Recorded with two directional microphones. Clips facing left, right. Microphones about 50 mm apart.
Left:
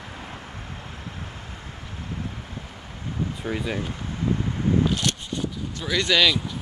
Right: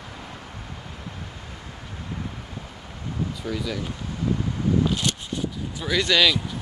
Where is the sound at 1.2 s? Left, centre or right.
Left.